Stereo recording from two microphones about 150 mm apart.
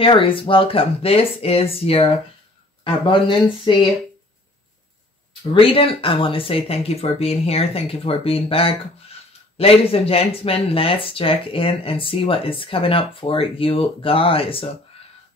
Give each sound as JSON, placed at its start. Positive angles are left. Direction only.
{"t": 0.0, "sound": "speech", "side_deg": 35}
{"t": 5.5, "sound": "speech", "side_deg": 40}